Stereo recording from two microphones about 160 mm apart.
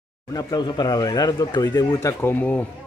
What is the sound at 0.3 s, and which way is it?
Speech, 25° left (ahead or behind).